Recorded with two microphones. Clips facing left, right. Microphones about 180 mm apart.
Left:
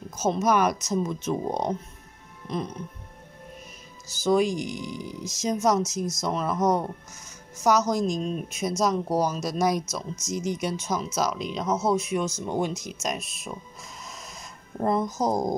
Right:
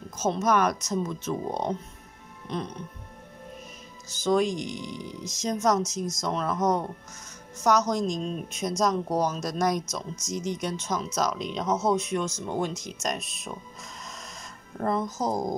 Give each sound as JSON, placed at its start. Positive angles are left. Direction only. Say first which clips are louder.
{"t": 0.2, "sound": "speech", "louder": "left 1 dB", "side_deg": 10}
{"t": 4.1, "sound": "speech", "louder": "left 2 dB", "side_deg": 10}
{"t": 14.8, "sound": "speech", "louder": "left 3 dB", "side_deg": 15}